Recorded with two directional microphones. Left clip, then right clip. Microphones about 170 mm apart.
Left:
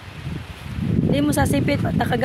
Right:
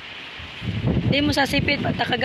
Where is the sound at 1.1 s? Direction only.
25° left (ahead or behind).